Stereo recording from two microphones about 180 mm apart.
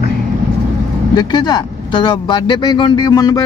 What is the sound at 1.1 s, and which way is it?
Speech, 25° left (ahead or behind).